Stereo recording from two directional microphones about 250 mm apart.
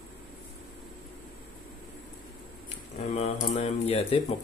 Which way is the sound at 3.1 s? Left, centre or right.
Left.